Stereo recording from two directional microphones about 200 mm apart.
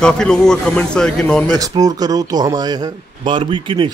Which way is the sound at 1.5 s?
20° right (ahead or behind).